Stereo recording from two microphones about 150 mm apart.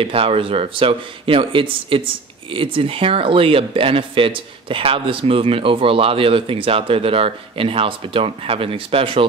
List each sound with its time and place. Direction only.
0.0 s speech: 40° right (ahead or behind)